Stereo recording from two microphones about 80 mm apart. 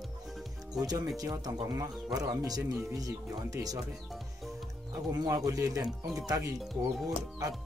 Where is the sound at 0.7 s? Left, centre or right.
Right.